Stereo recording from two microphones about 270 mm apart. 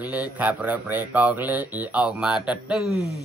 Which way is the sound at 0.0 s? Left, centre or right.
Centre.